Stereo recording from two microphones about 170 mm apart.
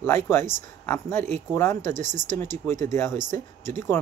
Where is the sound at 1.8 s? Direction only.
45° right (ahead or behind).